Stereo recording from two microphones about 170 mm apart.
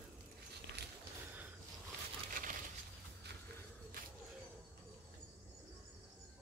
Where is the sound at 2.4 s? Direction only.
55° right (ahead or behind).